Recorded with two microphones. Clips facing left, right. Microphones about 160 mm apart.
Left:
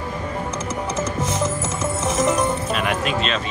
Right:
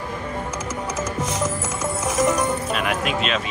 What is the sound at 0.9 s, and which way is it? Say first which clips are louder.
Music: left 2 dB; 25° left (ahead or behind).